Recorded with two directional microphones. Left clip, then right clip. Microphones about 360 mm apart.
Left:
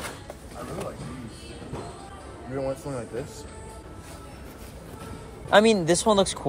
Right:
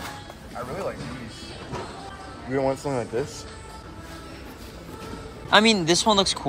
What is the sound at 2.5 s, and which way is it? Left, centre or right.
Speech, right.